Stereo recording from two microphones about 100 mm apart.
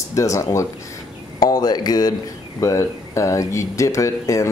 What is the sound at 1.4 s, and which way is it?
Speech, 40° left (ahead or behind).